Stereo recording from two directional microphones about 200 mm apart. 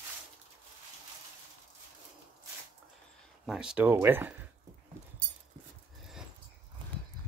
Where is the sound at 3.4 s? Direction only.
5° right (ahead or behind).